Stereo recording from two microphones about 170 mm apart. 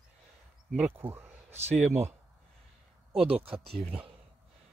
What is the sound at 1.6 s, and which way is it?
Speech, 40° right (ahead or behind).